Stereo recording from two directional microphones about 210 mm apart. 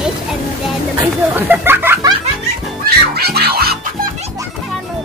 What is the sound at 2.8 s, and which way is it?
Music, 50° right (ahead or behind).